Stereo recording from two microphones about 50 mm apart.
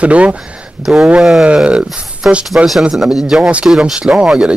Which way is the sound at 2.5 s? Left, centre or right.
Right.